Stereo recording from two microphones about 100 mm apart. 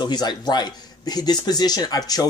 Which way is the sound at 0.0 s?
45° left (ahead or behind).